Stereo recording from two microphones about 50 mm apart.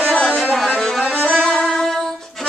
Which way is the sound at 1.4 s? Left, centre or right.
Centre.